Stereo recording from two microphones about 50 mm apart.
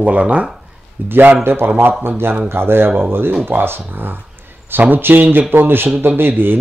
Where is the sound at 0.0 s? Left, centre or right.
Right.